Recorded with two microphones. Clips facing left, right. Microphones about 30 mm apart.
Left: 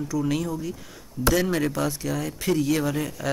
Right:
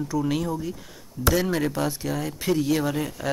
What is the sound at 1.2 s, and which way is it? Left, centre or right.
Speech, centre.